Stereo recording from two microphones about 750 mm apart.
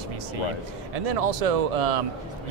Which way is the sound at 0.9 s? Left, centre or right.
Right.